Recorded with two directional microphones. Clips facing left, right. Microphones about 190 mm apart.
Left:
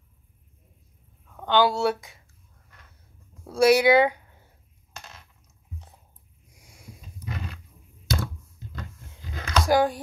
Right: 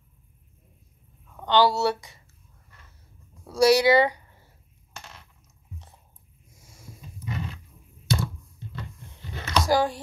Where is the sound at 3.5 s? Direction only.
55° left (ahead or behind).